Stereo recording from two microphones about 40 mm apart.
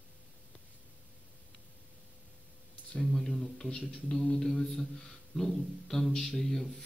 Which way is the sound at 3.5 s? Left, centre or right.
Centre.